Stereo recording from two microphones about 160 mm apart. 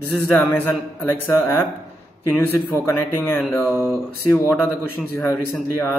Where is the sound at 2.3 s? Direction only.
15° left (ahead or behind).